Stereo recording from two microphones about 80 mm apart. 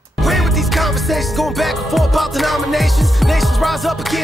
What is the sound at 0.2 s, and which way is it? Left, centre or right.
Music, centre.